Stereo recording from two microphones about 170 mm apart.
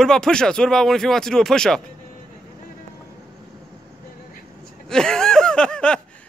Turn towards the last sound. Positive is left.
turn(degrees=5)  # may be behind; listen again after turning